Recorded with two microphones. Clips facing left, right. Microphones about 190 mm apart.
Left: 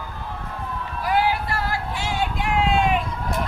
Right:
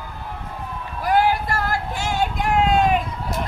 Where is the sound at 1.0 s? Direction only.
45° right (ahead or behind).